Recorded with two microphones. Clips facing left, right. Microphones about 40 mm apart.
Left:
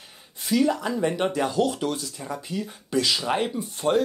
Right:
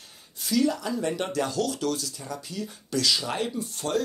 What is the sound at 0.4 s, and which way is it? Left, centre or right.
Speech, left.